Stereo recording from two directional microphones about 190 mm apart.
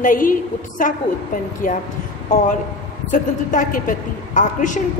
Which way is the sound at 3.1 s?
45° left (ahead or behind).